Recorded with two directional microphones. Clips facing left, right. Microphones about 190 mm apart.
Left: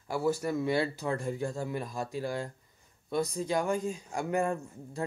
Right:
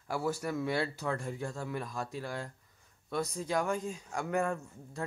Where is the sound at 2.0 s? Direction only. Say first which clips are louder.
Left 4 dB; 5° left (ahead or behind).